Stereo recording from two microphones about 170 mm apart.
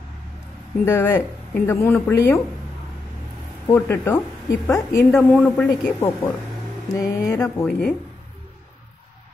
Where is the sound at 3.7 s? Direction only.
15° left (ahead or behind).